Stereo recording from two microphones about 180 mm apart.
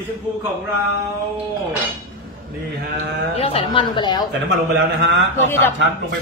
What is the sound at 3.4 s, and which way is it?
Speech, 30° left (ahead or behind).